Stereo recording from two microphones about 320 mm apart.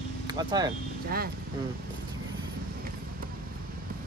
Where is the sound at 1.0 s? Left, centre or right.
Right.